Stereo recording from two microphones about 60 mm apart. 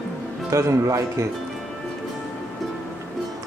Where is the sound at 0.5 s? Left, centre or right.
Right.